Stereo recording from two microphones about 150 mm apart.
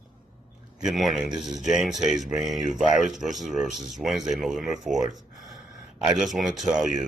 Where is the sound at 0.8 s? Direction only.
Centre (ahead or behind).